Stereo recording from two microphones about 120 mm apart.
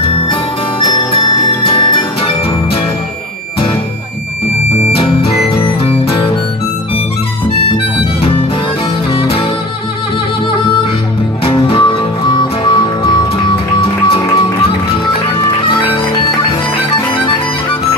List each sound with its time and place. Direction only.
0.3 s music: 50° left (ahead or behind)
4.9 s music: 50° left (ahead or behind)
9.1 s music: 50° left (ahead or behind)
11.4 s music: 45° left (ahead or behind)